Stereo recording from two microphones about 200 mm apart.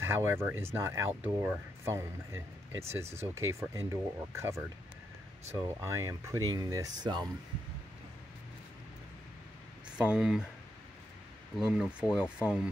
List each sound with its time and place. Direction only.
0.0 s speech: 10° right (ahead or behind)
9.8 s speech: 5° right (ahead or behind)
11.5 s speech: centre (ahead or behind)